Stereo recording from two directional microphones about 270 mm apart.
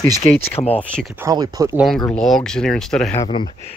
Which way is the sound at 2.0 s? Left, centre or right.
Centre.